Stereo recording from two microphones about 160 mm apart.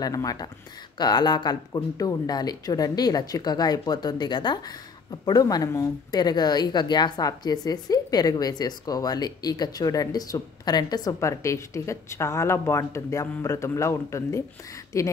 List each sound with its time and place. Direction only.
0.0 s a woman's voice: 25° left (ahead or behind)